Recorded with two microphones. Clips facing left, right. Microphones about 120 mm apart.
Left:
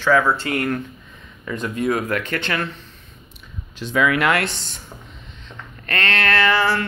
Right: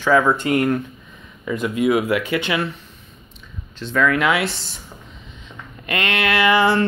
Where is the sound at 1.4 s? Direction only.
10° right (ahead or behind).